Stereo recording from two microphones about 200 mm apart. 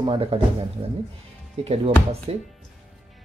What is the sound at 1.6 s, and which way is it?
Speech, 30° right (ahead or behind).